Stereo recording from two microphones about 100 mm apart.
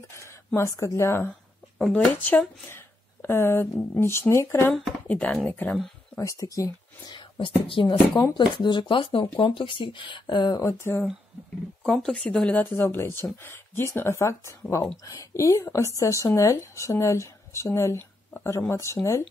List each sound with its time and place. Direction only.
0.6 s a woman's voice: 30° left (ahead or behind)
5.0 s a woman's voice: 10° left (ahead or behind)
6.1 s speech: 30° left (ahead or behind)
7.2 s whispering: 55° left (ahead or behind)
7.6 s speech: 60° left (ahead or behind); by 10.9 s 35° left (ahead or behind)
11.8 s a woman's voice: 5° left (ahead or behind); by 18.9 s 25° left (ahead or behind)